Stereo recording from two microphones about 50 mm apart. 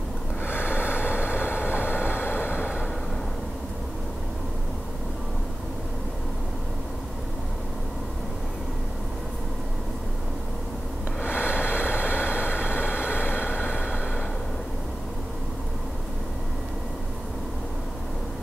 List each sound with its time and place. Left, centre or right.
0.5 s vehicle: left
11.2 s vehicle: left